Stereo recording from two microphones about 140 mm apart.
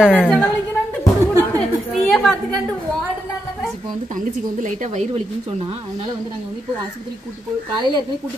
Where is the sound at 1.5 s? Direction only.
5° left (ahead or behind).